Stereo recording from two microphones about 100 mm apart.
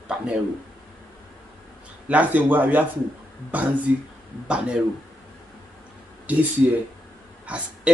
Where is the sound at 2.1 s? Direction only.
15° right (ahead or behind).